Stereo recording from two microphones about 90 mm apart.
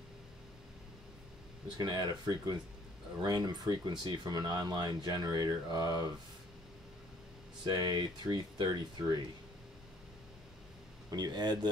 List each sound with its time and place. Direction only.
1.8 s speech: 45° right (ahead or behind)
7.6 s speech: 50° right (ahead or behind)
11.1 s speech: 50° right (ahead or behind)